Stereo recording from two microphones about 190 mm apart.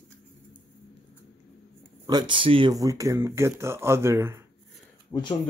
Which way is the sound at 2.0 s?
25° right (ahead or behind).